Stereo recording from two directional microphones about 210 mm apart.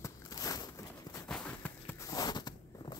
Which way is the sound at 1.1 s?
5° left (ahead or behind).